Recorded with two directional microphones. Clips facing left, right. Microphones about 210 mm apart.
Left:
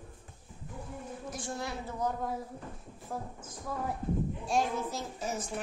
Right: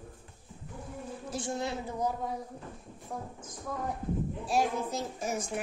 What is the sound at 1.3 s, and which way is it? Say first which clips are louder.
Speech: right 5 dB; 25° right (ahead or behind).